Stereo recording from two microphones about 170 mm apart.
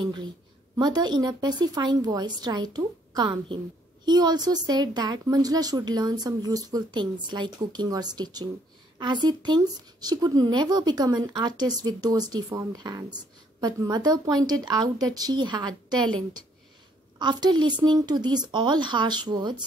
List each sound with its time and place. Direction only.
0.7 s a woman's voice: 25° right (ahead or behind)
17.2 s a woman's voice: 25° right (ahead or behind)